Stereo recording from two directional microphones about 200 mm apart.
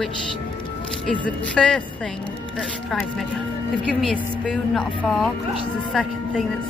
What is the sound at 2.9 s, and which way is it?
Speech, centre (ahead or behind).